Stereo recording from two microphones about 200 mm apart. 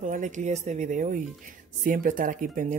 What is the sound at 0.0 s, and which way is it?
Speech, 35° right (ahead or behind).